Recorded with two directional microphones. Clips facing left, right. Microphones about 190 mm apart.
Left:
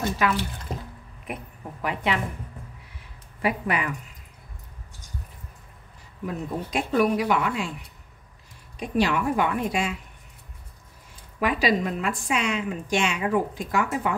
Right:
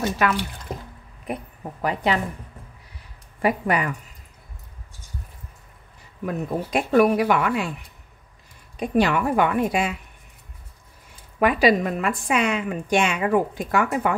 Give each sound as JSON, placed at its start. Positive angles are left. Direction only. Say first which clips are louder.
{"t": 1.2, "sound": "a woman's voice", "louder": "right 5 dB", "side_deg": -35}
{"t": 3.4, "sound": "speech", "louder": "right 4 dB", "side_deg": -45}
{"t": 6.2, "sound": "a woman's voice", "louder": "right 4 dB", "side_deg": -60}
{"t": 8.7, "sound": "a woman's voice", "louder": "right 3 dB", "side_deg": -55}
{"t": 11.3, "sound": "a woman's voice", "louder": "right 5 dB", "side_deg": -55}